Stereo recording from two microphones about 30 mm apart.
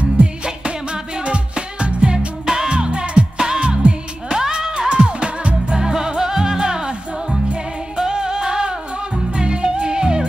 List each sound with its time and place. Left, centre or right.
0.0 s music: right
2.4 s music: right
2.7 s music: right